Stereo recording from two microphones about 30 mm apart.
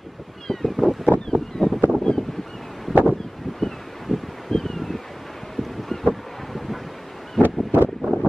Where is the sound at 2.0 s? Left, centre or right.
Centre.